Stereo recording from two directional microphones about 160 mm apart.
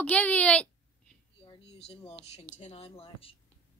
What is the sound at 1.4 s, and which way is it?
Speech, 35° left (ahead or behind).